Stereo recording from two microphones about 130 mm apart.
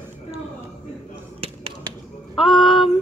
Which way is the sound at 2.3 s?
40° left (ahead or behind).